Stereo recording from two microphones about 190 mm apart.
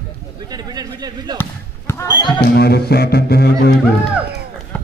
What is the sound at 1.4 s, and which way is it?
Basketball bounce, 15° left (ahead or behind).